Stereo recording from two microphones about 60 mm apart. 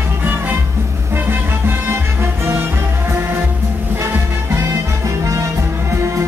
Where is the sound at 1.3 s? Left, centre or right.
Right.